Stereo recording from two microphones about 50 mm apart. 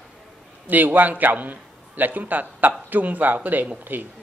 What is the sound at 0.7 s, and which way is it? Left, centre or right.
A man's voice, right.